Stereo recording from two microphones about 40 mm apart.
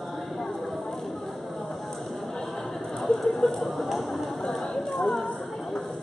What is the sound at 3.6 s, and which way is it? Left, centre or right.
Speech, centre.